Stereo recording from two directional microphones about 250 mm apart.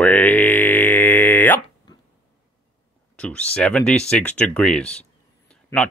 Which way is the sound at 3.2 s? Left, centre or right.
Centre.